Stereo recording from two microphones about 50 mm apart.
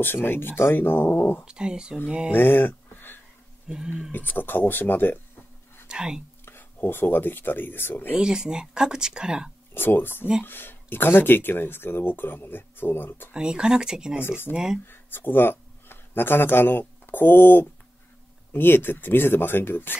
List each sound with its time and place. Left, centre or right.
0.0 s speech: left
1.4 s speech: centre
2.3 s a sound: left
3.6 s speech: centre
4.1 s speech: left
5.9 s speech: centre
6.4 s speech: left
8.2 s speech: centre
9.8 s speech: left
13.3 s speech: centre
14.2 s speech: left
14.5 s speech: centre
14.9 s speech: left